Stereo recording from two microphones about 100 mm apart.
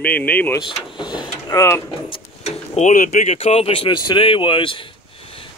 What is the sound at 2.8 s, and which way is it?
Speech, 90° left.